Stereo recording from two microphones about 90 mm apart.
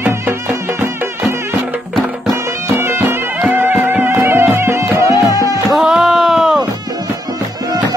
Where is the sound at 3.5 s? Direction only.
25° right (ahead or behind).